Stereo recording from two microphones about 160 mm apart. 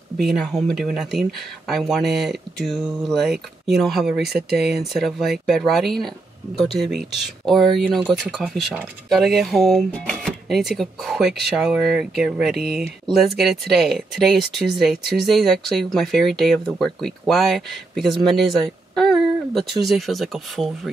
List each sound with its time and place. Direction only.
0.2 s speech: centre (ahead or behind)